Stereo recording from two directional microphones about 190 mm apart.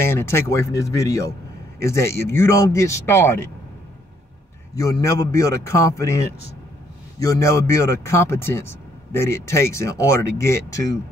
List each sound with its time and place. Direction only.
0.0 s speech: 15° left (ahead or behind)
4.7 s speech: 20° left (ahead or behind)
7.3 s speech: 15° left (ahead or behind)